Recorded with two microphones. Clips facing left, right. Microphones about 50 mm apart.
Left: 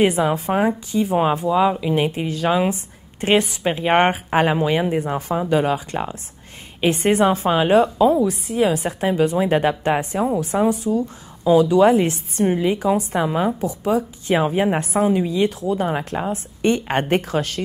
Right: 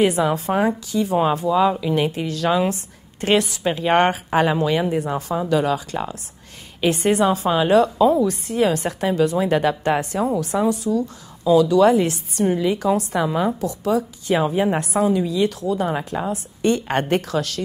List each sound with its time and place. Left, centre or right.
0.0 s speech: left
8.2 s a woman's voice: centre
9.0 s speech: centre